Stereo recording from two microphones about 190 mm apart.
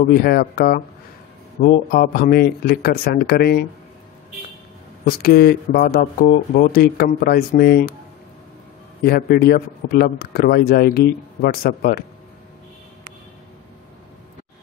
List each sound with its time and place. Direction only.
0.1 s speech: 55° left (ahead or behind)
5.2 s speech: 55° left (ahead or behind)
9.0 s speech: 55° left (ahead or behind)